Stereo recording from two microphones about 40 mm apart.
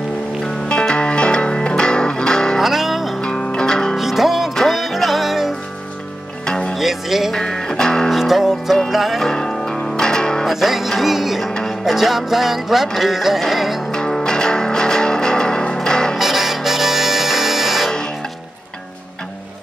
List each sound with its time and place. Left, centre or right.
0.7 s music: left
2.6 s music: centre
3.3 s music: centre
3.9 s music: centre
6.4 s music: centre
6.8 s music: centre
7.3 s music: centre
8.1 s music: centre
9.2 s music: centre
10.4 s music: centre
13.9 s music: centre
16.2 s music: centre
17.8 s music: centre